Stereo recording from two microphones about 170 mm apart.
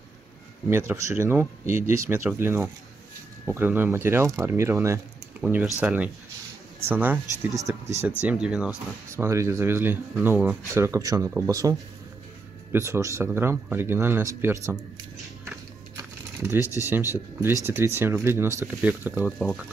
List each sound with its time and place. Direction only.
0.7 s speech: 15° right (ahead or behind)
8.2 s speech: 5° right (ahead or behind)
9.1 s speech: 15° right (ahead or behind)
12.7 s speech: 15° right (ahead or behind)
16.5 s speech: 20° left (ahead or behind)
17.1 s speech: 15° right (ahead or behind)